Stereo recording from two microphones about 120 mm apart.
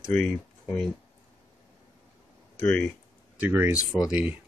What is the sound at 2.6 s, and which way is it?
Speech, 5° left (ahead or behind).